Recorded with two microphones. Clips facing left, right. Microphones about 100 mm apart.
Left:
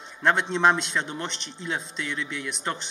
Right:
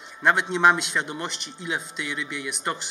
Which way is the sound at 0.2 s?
5° right (ahead or behind).